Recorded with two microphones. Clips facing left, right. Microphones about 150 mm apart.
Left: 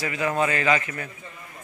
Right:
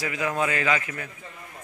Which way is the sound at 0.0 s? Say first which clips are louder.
Left 2 dB; 10° right (ahead or behind).